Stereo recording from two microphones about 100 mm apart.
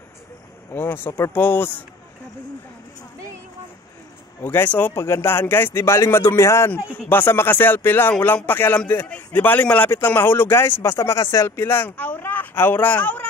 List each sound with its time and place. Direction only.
0.7 s speech: 20° left (ahead or behind)
4.4 s speech: 20° left (ahead or behind)
4.9 s a man's voice: 25° left (ahead or behind)